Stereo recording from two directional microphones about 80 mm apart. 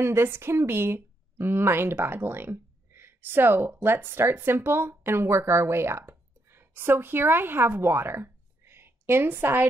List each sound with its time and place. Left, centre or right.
0.0 s a woman's voice: right